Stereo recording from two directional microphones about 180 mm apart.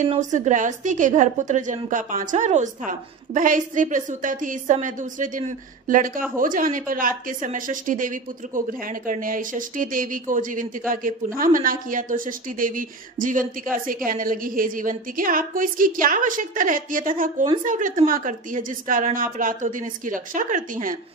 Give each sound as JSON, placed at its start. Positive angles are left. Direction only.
{"t": 0.1, "sound": "a woman's voice", "side_deg": -40}